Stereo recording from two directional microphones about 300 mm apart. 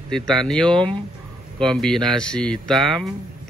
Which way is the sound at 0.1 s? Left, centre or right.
Centre.